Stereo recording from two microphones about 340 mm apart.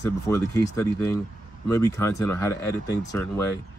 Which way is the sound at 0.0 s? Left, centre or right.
Centre.